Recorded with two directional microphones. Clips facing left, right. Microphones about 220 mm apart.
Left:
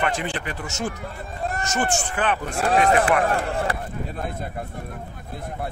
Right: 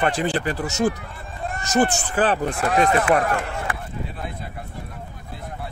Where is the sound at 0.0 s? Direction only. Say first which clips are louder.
Right 4 dB; 35° right (ahead or behind).